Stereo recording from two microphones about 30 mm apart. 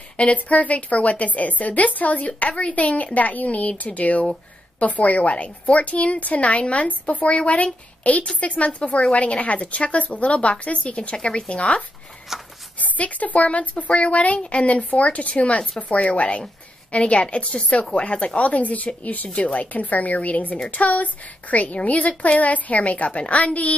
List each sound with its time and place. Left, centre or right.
0.3 s a woman's voice: left
12.3 s a sound: centre
12.7 s a woman's voice: left
19.2 s a woman's voice: left
19.5 s a woman's voice: left